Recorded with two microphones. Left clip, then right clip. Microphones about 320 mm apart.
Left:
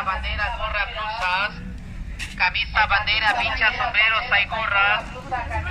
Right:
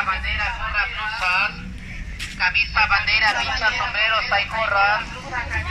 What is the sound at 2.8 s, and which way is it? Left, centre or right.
Speech, centre.